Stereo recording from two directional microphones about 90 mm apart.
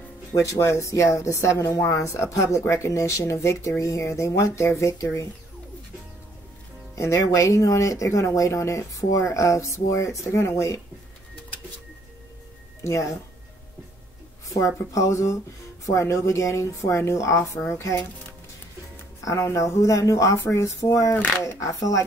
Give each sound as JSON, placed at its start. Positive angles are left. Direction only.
{"t": 0.3, "sound": "speech", "side_deg": 35}
{"t": 7.0, "sound": "speech", "side_deg": 35}
{"t": 12.8, "sound": "speech", "side_deg": 35}
{"t": 14.6, "sound": "speech", "side_deg": 35}
{"t": 19.2, "sound": "speech", "side_deg": 35}